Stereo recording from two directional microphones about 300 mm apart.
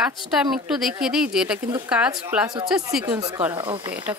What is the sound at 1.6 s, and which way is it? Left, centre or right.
Speech, centre.